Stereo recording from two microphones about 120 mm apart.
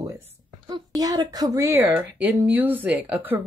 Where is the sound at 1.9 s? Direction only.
15° right (ahead or behind).